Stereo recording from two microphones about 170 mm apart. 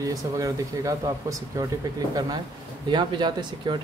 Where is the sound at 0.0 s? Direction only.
20° right (ahead or behind).